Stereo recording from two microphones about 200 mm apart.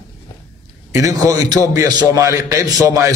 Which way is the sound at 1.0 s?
15° right (ahead or behind).